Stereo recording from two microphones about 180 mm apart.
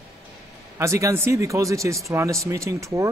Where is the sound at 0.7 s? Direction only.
15° right (ahead or behind).